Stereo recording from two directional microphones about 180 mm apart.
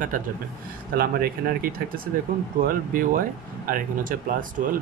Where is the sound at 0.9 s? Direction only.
55° right (ahead or behind).